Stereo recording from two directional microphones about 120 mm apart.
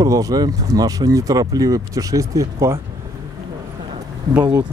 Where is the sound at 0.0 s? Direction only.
30° right (ahead or behind).